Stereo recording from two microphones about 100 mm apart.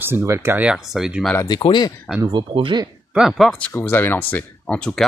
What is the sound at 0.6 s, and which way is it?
Speech, 5° right (ahead or behind).